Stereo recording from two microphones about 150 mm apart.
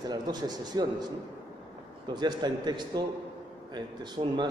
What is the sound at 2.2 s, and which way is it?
A man's voice, 30° right (ahead or behind).